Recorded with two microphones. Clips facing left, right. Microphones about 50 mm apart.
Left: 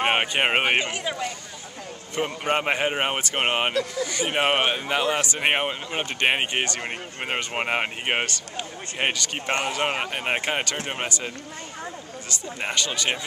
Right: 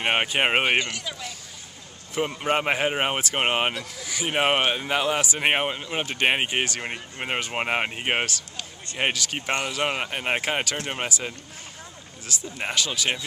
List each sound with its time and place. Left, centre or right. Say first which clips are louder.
0.0 s speech: left 1 dB; centre
0.7 s speech: left 1 dB; centre
2.1 s speech: even; centre
4.3 s speech: right 1 dB; centre
12.5 s speech: even; centre